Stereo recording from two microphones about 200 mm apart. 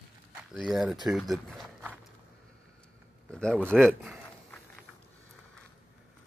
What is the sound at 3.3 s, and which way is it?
Speech, 5° left (ahead or behind).